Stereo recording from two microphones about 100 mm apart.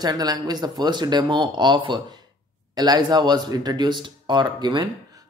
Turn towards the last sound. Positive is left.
turn(degrees=-50)  # may be behind; listen again after turning